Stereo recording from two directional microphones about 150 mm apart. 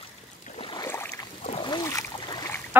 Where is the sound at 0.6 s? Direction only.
30° left (ahead or behind).